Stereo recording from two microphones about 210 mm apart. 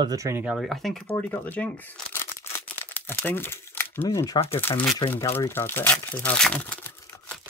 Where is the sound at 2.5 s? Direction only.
10° left (ahead or behind).